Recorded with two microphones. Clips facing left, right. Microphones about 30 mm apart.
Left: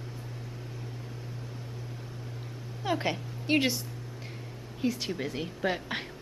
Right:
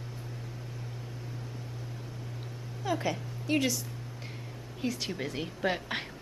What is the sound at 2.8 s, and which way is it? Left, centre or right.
Speech, left.